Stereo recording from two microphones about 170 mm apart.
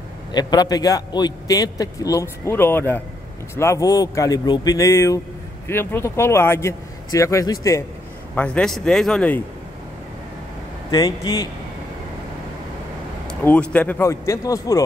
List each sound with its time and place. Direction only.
0.3 s a man's voice: 25° left (ahead or behind)
8.4 s speech: 5° left (ahead or behind)
10.9 s a man's voice: 20° left (ahead or behind)
13.3 s speech: 10° left (ahead or behind)